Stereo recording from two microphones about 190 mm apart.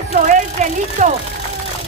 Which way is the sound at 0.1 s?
40° right (ahead or behind).